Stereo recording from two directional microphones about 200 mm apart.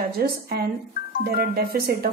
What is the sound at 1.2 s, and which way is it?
Speech, 50° right (ahead or behind).